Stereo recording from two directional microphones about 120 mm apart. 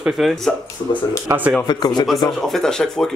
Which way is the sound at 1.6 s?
35° left (ahead or behind).